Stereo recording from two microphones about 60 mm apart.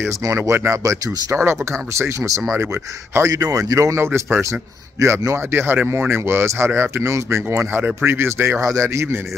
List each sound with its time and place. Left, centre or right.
0.2 s speech: right
3.3 s speech: right
5.5 s speech: right
7.1 s speech: right
8.5 s speech: right